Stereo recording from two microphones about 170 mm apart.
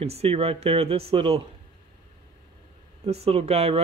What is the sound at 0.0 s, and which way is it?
Speech, 35° right (ahead or behind).